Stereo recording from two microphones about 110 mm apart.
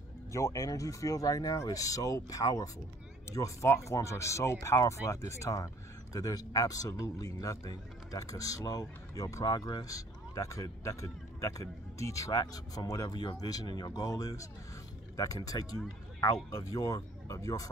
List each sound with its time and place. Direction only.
0.3 s speech: 25° left (ahead or behind)